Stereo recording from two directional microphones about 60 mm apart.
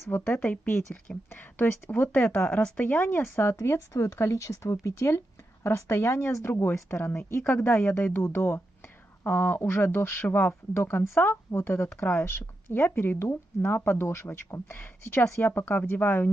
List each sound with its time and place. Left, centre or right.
0.1 s speech: left
1.9 s speech: left
2.8 s speech: left
3.5 s a woman's voice: left